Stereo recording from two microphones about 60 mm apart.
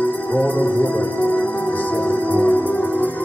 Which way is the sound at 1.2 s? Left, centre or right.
Left.